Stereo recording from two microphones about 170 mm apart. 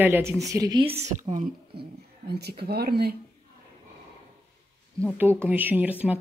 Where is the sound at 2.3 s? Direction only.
70° right (ahead or behind).